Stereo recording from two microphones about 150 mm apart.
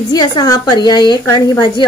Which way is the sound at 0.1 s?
25° left (ahead or behind).